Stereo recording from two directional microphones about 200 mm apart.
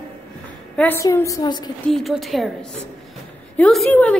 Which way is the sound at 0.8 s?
15° left (ahead or behind).